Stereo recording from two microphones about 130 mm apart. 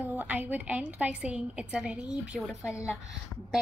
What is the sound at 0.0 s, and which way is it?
A woman's voice, 15° right (ahead or behind).